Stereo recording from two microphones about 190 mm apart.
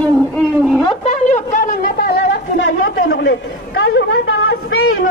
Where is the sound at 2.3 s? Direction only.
90° left.